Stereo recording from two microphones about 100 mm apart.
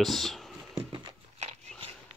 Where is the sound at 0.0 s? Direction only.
Centre (ahead or behind).